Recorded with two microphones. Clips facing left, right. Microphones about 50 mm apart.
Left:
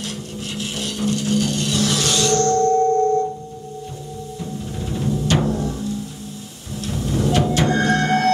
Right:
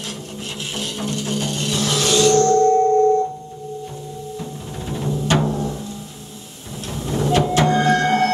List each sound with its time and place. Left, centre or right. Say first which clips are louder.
0.4 s music: left 1 dB; right
4.8 s music: even; right
6.8 s music: left 1 dB; right